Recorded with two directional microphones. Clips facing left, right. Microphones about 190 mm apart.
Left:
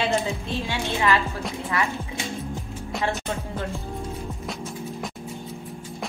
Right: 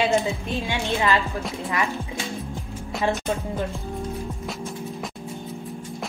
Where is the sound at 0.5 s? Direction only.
20° right (ahead or behind).